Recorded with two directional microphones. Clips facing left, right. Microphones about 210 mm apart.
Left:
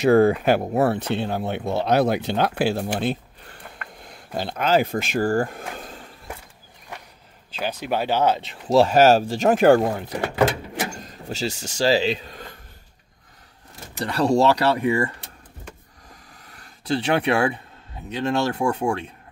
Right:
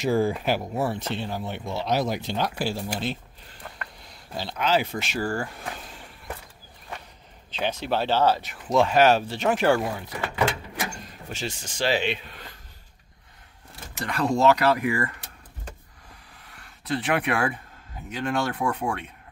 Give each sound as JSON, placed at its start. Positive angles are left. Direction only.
{"t": 0.0, "sound": "speech", "side_deg": 65}
{"t": 7.5, "sound": "speech", "side_deg": 10}
{"t": 8.6, "sound": "speech", "side_deg": 40}
{"t": 10.8, "sound": "vehicle", "side_deg": 35}
{"t": 11.8, "sound": "speech", "side_deg": 35}
{"t": 14.0, "sound": "speech", "side_deg": 30}
{"t": 16.4, "sound": "a sound", "side_deg": 40}
{"t": 18.1, "sound": "speech", "side_deg": 25}